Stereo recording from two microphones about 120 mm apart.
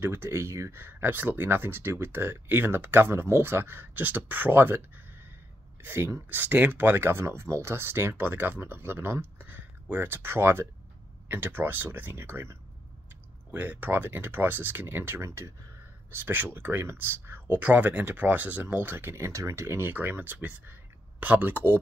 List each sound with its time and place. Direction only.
0.0 s speech: 20° right (ahead or behind)